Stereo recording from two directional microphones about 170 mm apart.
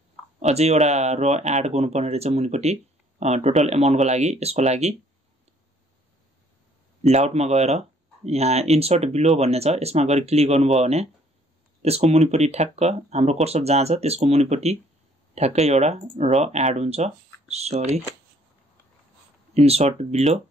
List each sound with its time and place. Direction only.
0.4 s speech: 40° right (ahead or behind)
7.0 s speech: 40° right (ahead or behind)
19.5 s speech: 40° right (ahead or behind)